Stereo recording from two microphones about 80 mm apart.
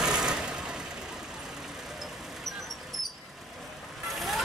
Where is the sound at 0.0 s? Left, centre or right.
Centre.